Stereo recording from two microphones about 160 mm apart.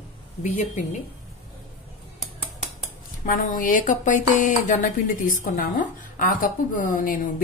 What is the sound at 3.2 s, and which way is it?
Speech, 55° left (ahead or behind).